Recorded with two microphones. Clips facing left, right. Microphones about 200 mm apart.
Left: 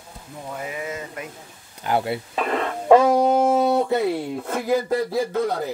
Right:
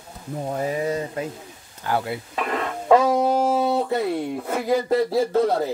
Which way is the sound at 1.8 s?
25° left (ahead or behind).